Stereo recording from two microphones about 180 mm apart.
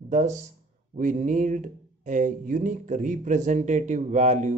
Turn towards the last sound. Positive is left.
turn(degrees=-40)  # may be behind; listen again after turning